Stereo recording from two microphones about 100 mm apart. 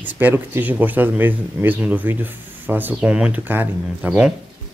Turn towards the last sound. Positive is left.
turn(degrees=-20)  # may be behind; listen again after turning